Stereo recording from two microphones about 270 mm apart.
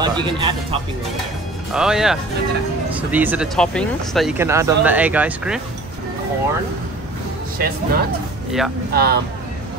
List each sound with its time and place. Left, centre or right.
0.0 s speech: centre
1.7 s speech: centre
7.5 s speech: right
8.5 s speech: centre
8.9 s speech: right